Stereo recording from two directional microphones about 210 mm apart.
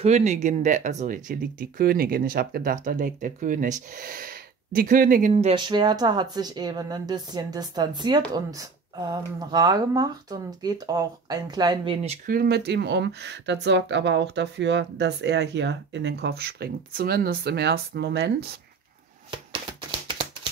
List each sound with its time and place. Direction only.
0.0 s speech: 35° right (ahead or behind)
5.3 s speech: 25° right (ahead or behind)
12.3 s speech: 45° right (ahead or behind)